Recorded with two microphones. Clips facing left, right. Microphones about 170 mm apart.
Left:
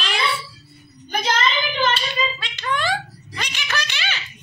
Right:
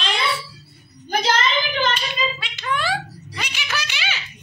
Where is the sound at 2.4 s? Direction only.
5° right (ahead or behind).